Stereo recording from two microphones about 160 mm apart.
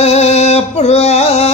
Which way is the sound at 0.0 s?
40° left (ahead or behind).